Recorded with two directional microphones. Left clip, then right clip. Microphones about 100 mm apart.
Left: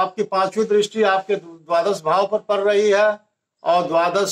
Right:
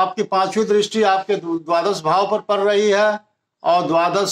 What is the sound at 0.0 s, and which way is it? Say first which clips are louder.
A man's voice: right 2 dB; 35° right (ahead or behind).